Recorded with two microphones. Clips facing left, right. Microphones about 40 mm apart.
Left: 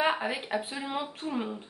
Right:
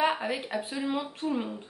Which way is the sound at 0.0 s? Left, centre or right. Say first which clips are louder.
Right 1 dB; centre.